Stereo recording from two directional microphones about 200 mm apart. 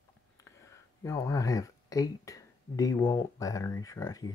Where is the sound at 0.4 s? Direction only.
15° left (ahead or behind).